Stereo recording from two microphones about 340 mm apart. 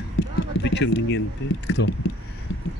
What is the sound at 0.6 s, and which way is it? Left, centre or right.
Speech, left.